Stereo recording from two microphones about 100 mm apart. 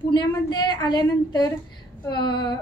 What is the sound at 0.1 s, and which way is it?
A woman's voice, 45° left (ahead or behind).